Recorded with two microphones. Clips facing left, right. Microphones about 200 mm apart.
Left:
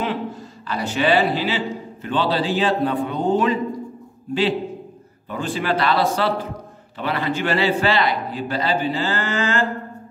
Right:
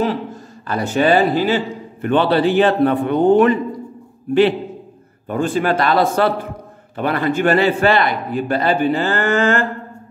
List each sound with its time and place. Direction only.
0.7 s a man's voice: 50° right (ahead or behind)